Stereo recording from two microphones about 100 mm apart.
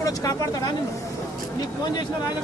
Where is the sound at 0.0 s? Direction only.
35° left (ahead or behind).